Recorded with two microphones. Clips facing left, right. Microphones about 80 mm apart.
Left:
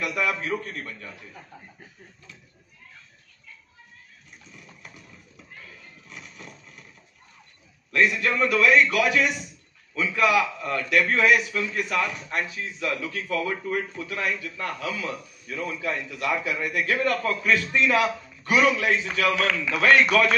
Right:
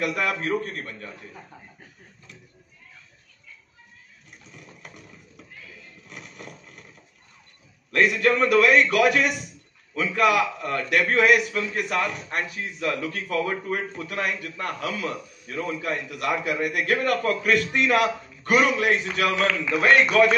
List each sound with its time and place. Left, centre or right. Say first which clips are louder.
0.0 s a man's voice: right 1 dB; right
6.0 s a sound: right 2 dB; right
7.9 s a man's voice: right 2 dB; right
19.3 s a man's voice: right 2 dB; right